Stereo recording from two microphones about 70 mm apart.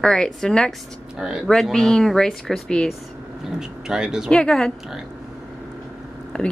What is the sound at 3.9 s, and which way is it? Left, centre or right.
Speech, centre.